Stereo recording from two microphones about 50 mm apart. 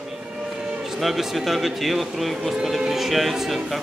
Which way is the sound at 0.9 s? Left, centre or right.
Centre.